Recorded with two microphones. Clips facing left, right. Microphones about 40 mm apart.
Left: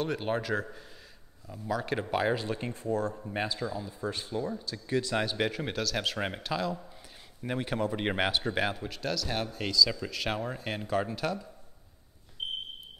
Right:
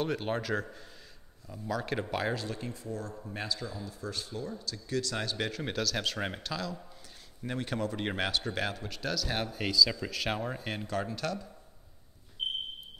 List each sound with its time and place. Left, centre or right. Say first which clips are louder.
0.0 s speech: left 1 dB; centre
2.4 s speech: left 5 dB; left
3.3 s speech: left 4 dB; left
8.9 s speech: left 1 dB; centre